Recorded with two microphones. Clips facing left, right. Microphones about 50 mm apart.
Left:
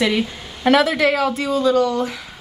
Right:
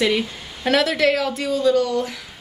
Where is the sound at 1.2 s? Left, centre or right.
Left.